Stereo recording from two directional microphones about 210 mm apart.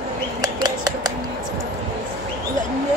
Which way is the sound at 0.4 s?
20° right (ahead or behind).